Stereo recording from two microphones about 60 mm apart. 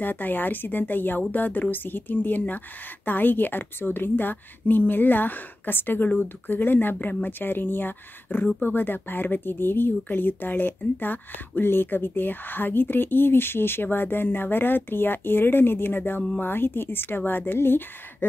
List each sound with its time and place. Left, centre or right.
0.0 s speech: left